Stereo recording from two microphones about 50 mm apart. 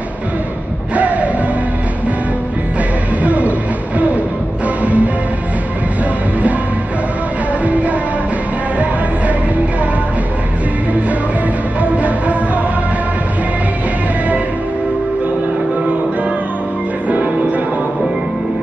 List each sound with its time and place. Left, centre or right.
0.9 s music: right
3.2 s music: right
4.8 s music: right
7.6 s music: right
11.8 s music: right
17.1 s music: right